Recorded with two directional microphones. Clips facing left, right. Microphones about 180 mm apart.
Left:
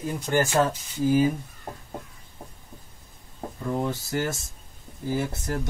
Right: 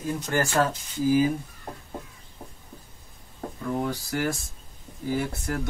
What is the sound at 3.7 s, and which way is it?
Speech, 20° left (ahead or behind).